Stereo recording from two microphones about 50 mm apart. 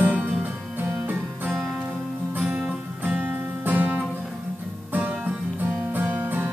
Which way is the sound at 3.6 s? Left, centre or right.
Right.